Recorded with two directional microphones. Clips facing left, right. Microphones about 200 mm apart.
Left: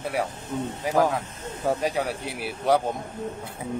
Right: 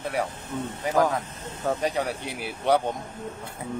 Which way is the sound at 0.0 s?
Centre (ahead or behind).